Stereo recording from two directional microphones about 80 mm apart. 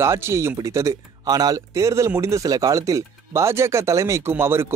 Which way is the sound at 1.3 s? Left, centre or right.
Right.